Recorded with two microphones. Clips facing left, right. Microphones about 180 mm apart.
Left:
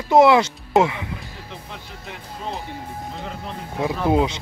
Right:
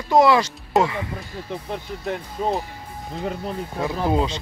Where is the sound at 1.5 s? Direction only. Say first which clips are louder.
Right 11 dB; 50° right (ahead or behind).